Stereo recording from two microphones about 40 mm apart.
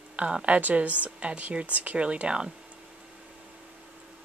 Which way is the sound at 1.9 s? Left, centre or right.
Right.